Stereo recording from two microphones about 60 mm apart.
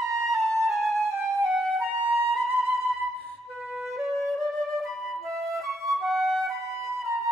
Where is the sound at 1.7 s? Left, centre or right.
Right.